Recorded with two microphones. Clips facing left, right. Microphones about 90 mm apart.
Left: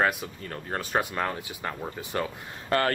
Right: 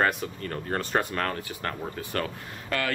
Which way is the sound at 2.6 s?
35° left (ahead or behind).